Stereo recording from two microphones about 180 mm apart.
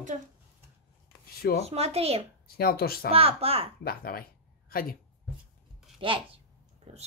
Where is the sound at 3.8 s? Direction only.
55° left (ahead or behind).